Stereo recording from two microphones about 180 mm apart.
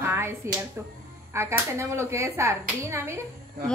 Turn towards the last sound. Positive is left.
turn(degrees=-15)  # may be behind; listen again after turning